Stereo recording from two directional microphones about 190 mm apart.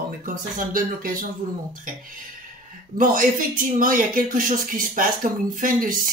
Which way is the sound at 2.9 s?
45° right (ahead or behind).